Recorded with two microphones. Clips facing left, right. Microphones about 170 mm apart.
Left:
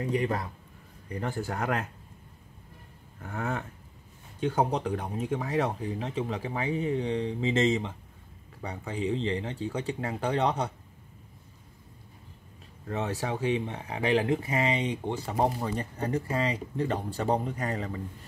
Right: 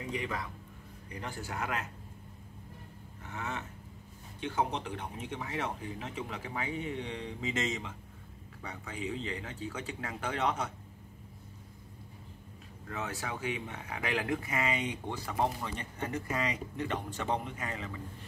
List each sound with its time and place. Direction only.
0.1 s speech: 45° left (ahead or behind)
3.2 s speech: 40° left (ahead or behind)
12.8 s speech: 35° left (ahead or behind)